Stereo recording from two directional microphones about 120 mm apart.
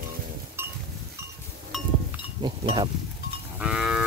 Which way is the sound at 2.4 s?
40° right (ahead or behind).